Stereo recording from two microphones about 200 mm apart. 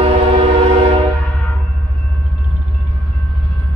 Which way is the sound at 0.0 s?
30° right (ahead or behind).